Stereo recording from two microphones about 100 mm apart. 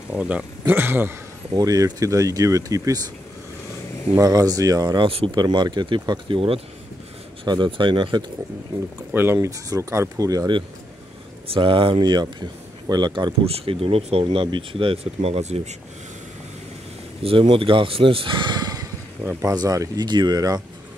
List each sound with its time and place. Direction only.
0.1 s speech: 10° right (ahead or behind)
1.5 s speech: 35° right (ahead or behind)
4.2 s speech: 40° right (ahead or behind); by 6.6 s 60° right (ahead or behind)
7.4 s speech: 50° right (ahead or behind)
9.1 s speech: 25° right (ahead or behind)
11.4 s speech: 65° right (ahead or behind); by 13.3 s 45° right (ahead or behind)
13.5 s speech: 70° right (ahead or behind); by 15.6 s 90° right
17.2 s speech: 65° right (ahead or behind); by 20.6 s 40° right (ahead or behind)